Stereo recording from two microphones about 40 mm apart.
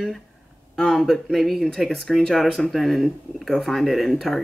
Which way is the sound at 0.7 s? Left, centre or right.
Centre.